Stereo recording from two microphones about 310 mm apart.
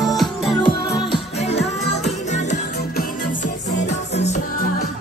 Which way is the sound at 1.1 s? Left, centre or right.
Left.